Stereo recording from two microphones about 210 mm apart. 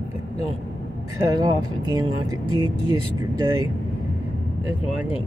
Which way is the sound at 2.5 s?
25° left (ahead or behind).